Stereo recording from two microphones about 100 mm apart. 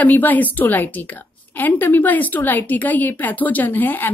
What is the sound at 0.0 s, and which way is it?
Speech, 15° left (ahead or behind).